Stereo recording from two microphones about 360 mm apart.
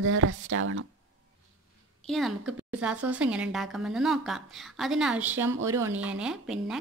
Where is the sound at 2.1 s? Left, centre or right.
Centre.